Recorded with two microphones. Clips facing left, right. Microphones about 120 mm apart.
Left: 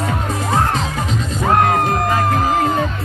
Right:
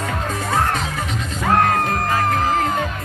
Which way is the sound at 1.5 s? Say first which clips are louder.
Left 2 dB; 15° left (ahead or behind).